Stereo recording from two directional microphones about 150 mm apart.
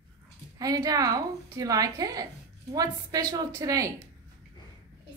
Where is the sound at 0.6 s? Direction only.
25° right (ahead or behind).